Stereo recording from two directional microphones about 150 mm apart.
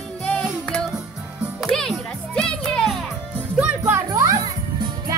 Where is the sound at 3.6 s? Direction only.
10° right (ahead or behind).